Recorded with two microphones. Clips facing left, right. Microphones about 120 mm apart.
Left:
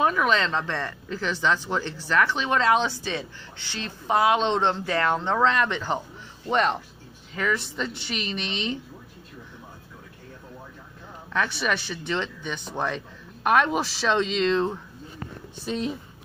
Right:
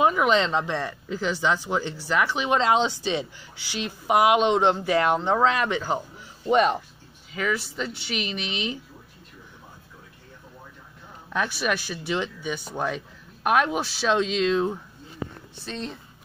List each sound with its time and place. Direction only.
0.0 s speech: 15° right (ahead or behind)
11.3 s speech: 5° right (ahead or behind)
15.5 s speech: 10° left (ahead or behind)